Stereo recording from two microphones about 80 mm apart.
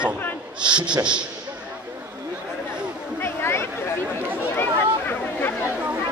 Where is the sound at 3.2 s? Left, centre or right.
Left.